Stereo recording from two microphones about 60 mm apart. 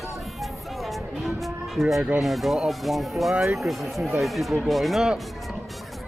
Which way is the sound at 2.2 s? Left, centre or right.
Centre.